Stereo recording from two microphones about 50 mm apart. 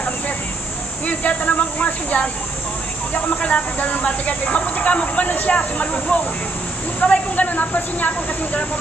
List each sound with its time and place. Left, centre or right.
1.0 s snake: left
3.2 s speech: left